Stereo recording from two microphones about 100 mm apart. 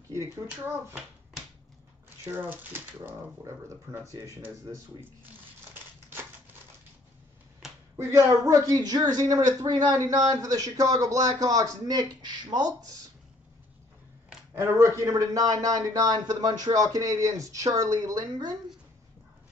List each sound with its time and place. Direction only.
0.5 s a child's voice: 10° right (ahead or behind)
3.4 s speech: 30° right (ahead or behind)
7.6 s a sound: 5° right (ahead or behind)
8.0 s speech: 35° right (ahead or behind)
14.5 s speech: 30° right (ahead or behind)